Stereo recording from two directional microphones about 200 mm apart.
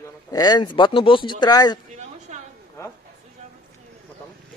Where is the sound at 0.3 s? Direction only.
20° left (ahead or behind).